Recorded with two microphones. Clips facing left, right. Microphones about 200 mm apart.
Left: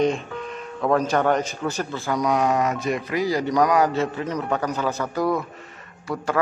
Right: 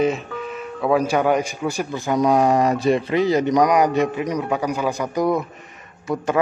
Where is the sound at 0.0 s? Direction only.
5° right (ahead or behind).